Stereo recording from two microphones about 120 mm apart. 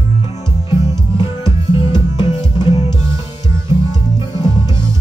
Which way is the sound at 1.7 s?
40° left (ahead or behind).